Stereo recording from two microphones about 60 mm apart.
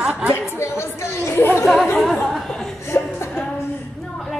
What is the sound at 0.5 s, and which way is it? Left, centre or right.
Chatter, left.